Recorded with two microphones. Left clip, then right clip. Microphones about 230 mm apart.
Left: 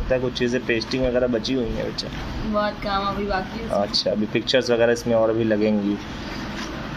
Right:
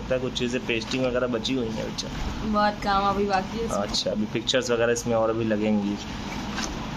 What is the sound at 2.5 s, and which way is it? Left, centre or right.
Speech, right.